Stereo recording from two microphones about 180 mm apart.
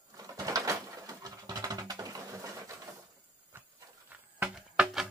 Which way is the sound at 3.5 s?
15° right (ahead or behind).